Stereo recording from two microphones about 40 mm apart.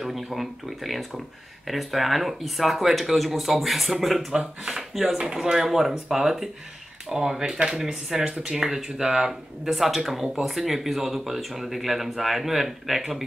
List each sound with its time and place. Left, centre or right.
0.0 s speech: centre
4.3 s speech: centre